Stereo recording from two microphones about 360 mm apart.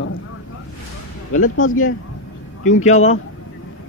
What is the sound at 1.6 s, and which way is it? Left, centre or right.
Speech, left.